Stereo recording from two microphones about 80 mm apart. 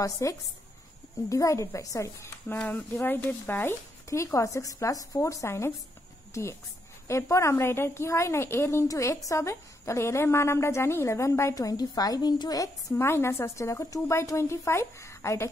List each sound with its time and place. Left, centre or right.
0.0 s speech: left
2.4 s speech: left
4.1 s speech: left
7.1 s speech: left
11.5 s a woman's voice: left
12.9 s speech: left